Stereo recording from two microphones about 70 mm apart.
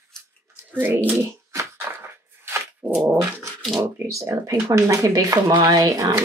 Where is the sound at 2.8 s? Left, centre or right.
Right.